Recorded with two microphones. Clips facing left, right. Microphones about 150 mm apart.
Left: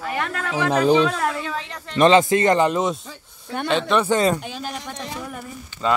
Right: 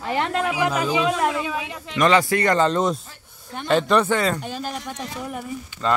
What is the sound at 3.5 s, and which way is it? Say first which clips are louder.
Speech: left 6 dB; 80° left.